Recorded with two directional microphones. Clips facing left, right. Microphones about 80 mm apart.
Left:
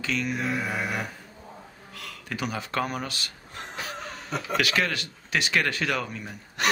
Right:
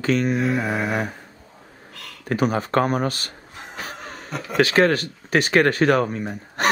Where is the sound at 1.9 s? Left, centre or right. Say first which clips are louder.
Even; centre.